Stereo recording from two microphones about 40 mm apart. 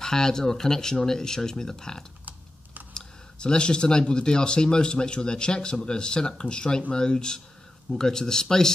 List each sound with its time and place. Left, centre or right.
0.0 s speech: centre